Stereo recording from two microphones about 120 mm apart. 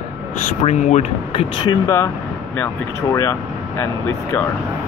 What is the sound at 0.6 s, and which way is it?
Speech, 70° left (ahead or behind).